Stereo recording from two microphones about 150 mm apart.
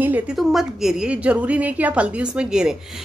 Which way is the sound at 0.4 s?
Centre (ahead or behind).